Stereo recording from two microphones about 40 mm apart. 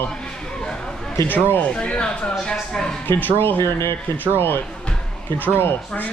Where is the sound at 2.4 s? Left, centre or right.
Centre.